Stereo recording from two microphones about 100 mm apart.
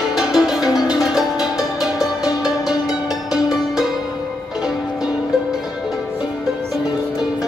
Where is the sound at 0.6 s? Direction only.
40° left (ahead or behind).